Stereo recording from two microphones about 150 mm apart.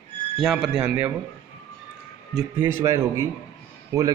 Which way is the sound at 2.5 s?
15° right (ahead or behind).